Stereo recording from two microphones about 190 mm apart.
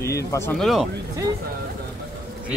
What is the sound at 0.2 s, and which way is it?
Speech, 15° left (ahead or behind).